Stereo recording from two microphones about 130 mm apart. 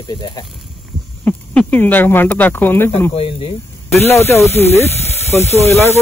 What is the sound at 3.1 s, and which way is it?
Speech, 45° left (ahead or behind).